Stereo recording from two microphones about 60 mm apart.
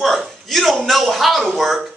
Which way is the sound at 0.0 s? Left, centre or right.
Centre.